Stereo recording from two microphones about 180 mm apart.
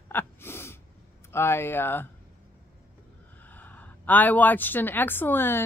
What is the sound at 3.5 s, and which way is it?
A woman's voice, 10° left (ahead or behind).